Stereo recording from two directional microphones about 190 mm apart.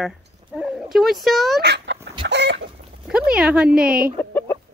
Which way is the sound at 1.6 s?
60° right (ahead or behind).